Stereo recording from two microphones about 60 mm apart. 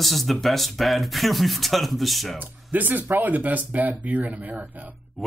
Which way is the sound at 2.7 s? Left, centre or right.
Right.